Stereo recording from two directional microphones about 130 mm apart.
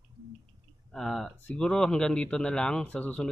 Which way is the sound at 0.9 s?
Centre (ahead or behind).